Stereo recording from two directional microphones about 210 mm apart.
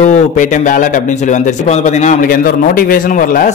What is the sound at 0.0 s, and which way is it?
A man's voice, 35° left (ahead or behind).